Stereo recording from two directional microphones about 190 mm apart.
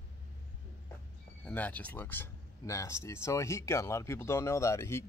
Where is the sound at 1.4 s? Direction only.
10° left (ahead or behind).